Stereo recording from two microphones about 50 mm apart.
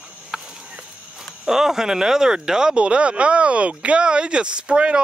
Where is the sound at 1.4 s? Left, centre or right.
Centre.